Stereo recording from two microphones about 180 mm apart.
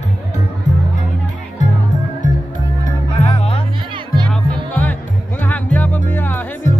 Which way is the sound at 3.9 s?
25° right (ahead or behind).